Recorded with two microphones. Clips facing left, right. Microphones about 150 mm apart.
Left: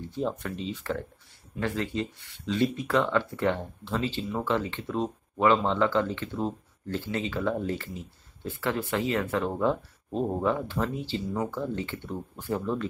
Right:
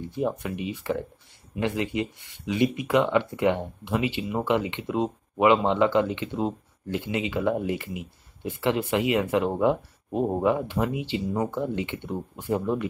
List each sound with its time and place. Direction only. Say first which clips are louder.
0.1 s speech: right 3 dB; 15° right (ahead or behind)